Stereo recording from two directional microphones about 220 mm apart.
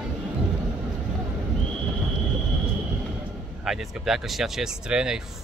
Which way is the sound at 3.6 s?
Centre (ahead or behind).